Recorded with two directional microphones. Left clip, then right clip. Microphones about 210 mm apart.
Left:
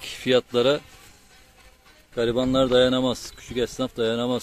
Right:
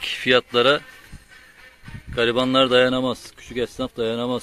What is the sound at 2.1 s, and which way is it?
Speech, 15° right (ahead or behind).